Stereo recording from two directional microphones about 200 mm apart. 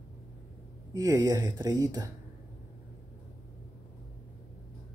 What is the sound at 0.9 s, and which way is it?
Speech, 20° right (ahead or behind).